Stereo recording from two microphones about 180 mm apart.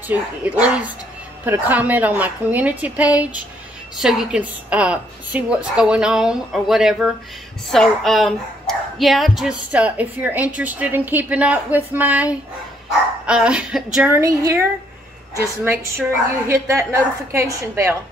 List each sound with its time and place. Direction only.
0.1 s a woman's voice: 10° right (ahead or behind)